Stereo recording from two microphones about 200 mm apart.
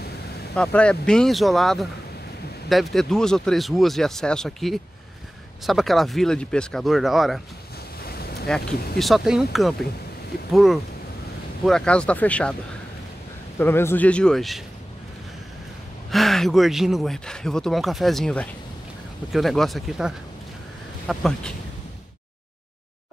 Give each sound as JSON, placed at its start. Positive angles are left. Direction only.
{"t": 0.6, "sound": "speech", "side_deg": 5}
{"t": 8.0, "sound": "boat", "side_deg": 50}
{"t": 8.5, "sound": "speech", "side_deg": 5}
{"t": 13.6, "sound": "speech", "side_deg": 10}
{"t": 16.1, "sound": "speech", "side_deg": 0}